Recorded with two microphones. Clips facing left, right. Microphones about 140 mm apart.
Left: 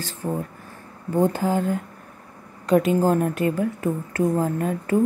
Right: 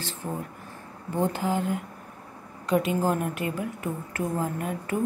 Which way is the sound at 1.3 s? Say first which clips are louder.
Left 4 dB; 40° left (ahead or behind).